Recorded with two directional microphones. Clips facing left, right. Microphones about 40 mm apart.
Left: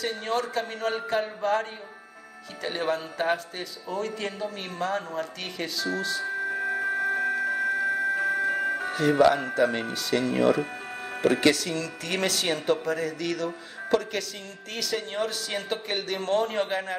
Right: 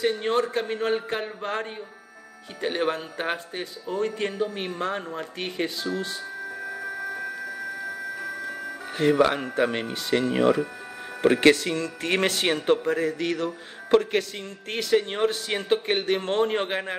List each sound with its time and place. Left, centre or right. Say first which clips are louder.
0.0 s speech: right 5 dB; right
6.5 s music: left 6 dB; left
9.2 s speech: left 1 dB; right